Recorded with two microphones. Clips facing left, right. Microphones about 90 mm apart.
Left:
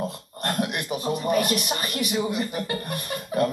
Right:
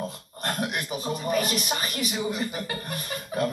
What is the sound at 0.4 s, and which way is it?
Speech, centre (ahead or behind).